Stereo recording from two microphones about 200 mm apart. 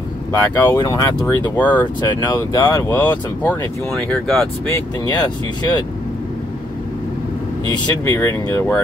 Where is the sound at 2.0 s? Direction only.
20° left (ahead or behind); by 4.4 s 5° left (ahead or behind).